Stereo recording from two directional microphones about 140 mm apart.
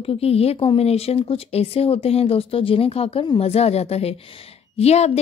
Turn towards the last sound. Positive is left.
turn(degrees=50)  # may be behind; listen again after turning